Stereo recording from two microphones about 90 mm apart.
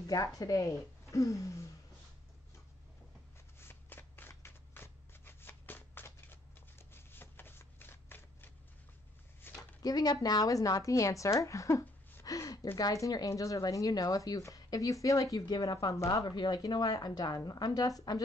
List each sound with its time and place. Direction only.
0.0 s speech: 45° left (ahead or behind)
3.5 s shuffling cards: 25° left (ahead or behind)
9.4 s a sound: 25° left (ahead or behind)
9.8 s speech: 45° left (ahead or behind)
12.3 s gasp: 40° left (ahead or behind)
12.7 s speech: 40° left (ahead or behind)